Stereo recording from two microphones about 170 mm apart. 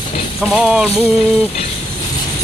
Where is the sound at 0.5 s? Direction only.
5° right (ahead or behind).